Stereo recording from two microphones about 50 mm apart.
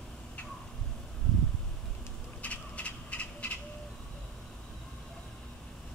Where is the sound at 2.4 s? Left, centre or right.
Left.